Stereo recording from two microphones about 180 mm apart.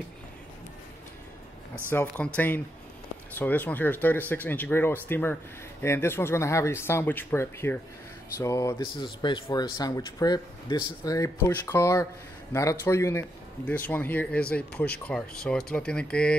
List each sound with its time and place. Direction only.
1.9 s speech: 10° left (ahead or behind)